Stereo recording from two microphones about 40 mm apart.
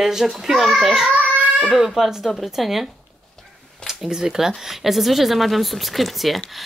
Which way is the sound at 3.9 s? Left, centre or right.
Centre.